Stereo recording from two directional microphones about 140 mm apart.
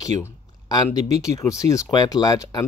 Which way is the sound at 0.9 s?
50° right (ahead or behind).